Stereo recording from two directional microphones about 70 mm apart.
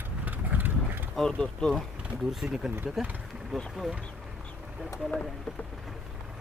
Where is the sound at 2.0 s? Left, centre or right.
Centre.